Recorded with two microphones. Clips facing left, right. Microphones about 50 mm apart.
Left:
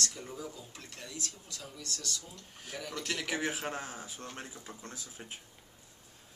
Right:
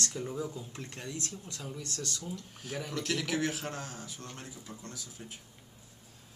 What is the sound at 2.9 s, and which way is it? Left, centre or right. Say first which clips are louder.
A man's voice: right 3 dB; centre.